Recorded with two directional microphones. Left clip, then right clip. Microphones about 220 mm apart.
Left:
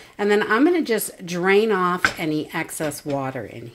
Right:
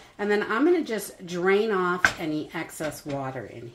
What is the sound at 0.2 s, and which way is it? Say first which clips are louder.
Speech: left 6 dB; 50° left (ahead or behind).